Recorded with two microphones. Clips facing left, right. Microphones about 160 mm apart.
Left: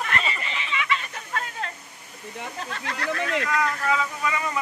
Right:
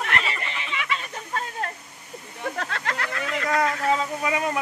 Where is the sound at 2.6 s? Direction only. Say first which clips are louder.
Right 3 dB; 90° right.